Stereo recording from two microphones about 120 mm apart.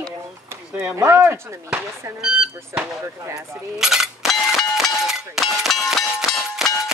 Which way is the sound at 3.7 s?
5° right (ahead or behind).